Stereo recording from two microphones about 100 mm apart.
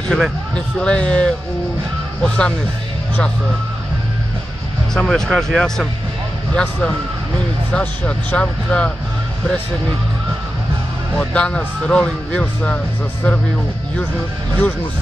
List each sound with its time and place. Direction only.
0.1 s speech: 5° left (ahead or behind)
4.9 s speech: 5° left (ahead or behind)
11.1 s speech: 10° left (ahead or behind)